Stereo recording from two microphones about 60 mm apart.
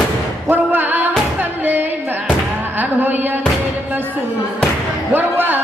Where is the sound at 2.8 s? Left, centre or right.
Right.